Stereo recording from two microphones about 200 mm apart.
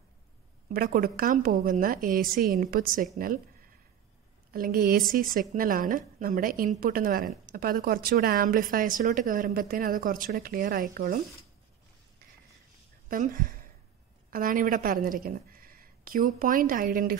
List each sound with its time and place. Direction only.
0.7 s a woman's voice: 45° right (ahead or behind)
4.5 s a woman's voice: 45° right (ahead or behind)
13.1 s a woman's voice: 40° right (ahead or behind)